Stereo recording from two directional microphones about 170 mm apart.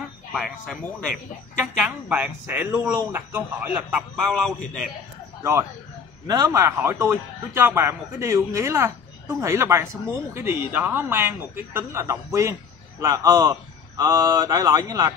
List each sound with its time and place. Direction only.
0.3 s a man's voice: centre (ahead or behind)
3.9 s a man's voice: centre (ahead or behind)
5.4 s a man's voice: 15° right (ahead or behind)